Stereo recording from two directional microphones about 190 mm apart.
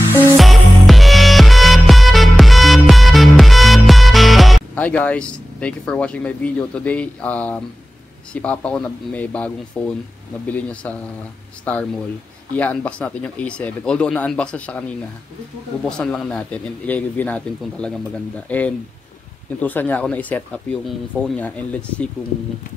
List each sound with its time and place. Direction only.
0.4 s music: centre (ahead or behind)
8.3 s speech: 5° left (ahead or behind)
16.0 s speech: 5° left (ahead or behind)